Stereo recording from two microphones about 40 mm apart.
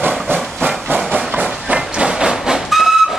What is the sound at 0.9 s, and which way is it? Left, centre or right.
Train, right.